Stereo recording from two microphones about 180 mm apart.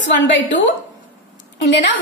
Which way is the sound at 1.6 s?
75° left (ahead or behind).